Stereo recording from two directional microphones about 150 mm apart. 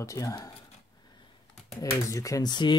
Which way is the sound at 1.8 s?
20° left (ahead or behind).